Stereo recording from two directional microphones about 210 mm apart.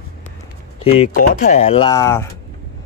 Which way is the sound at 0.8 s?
35° left (ahead or behind).